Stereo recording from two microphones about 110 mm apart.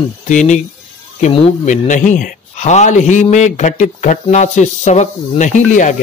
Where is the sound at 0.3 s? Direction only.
90° left.